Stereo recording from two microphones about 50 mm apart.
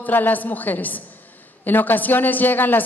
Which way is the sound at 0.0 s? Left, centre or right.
Left.